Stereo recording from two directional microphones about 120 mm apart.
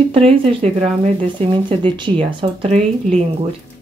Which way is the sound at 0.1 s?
50° right (ahead or behind).